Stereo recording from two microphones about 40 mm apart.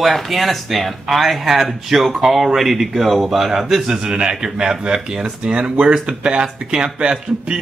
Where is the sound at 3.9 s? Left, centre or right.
Centre.